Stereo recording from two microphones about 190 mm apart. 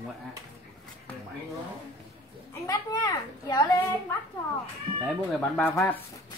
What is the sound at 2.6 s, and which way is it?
A child's voice, 15° left (ahead or behind).